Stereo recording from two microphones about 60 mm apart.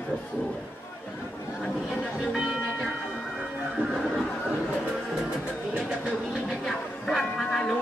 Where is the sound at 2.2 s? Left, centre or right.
Centre.